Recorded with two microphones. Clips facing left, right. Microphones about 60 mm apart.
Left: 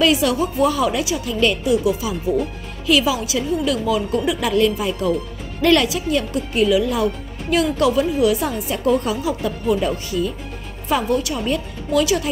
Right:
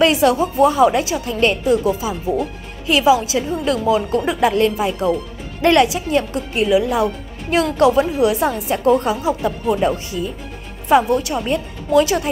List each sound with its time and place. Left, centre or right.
0.0 s speech: right